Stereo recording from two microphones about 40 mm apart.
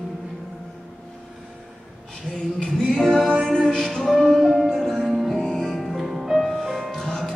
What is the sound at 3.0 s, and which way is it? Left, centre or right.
Music, left.